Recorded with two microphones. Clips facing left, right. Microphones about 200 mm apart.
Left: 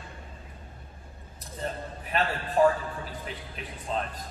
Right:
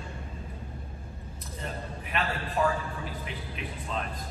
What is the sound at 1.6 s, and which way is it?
A man's voice, 35° left (ahead or behind).